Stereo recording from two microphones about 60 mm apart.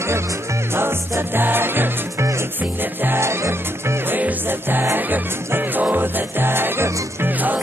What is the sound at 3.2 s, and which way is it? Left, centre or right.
Music, right.